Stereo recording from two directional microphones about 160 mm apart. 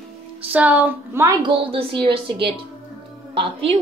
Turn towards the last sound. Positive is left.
turn(degrees=-35)  # may be behind; listen again after turning